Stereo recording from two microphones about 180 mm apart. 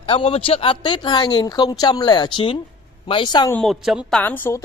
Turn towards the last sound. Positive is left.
turn(degrees=10)  # may be behind; listen again after turning